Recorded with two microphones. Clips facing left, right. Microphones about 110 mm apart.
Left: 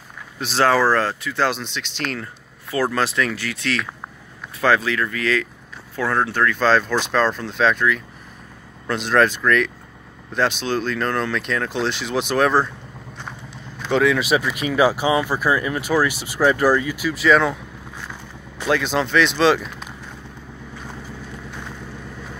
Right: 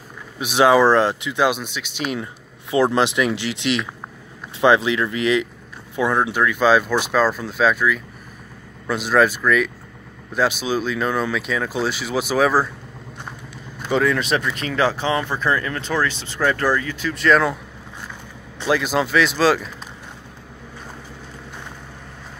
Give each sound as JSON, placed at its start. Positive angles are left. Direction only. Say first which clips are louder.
{"t": 0.4, "sound": "speech", "louder": "right 3 dB", "side_deg": -15}
{"t": 2.7, "sound": "speech", "louder": "right 4 dB", "side_deg": -20}
{"t": 13.8, "sound": "speech", "louder": "left 1 dB", "side_deg": 0}
{"t": 18.6, "sound": "speech", "louder": "right 1 dB", "side_deg": -5}